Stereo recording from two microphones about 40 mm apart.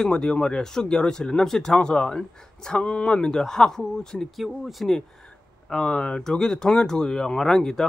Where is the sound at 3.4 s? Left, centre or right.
Centre.